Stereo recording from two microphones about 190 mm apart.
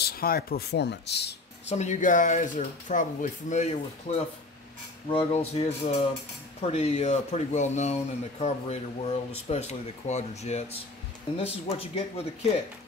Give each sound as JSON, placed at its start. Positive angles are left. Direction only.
{"t": 0.0, "sound": "speech", "side_deg": 50}
{"t": 1.7, "sound": "speech", "side_deg": 40}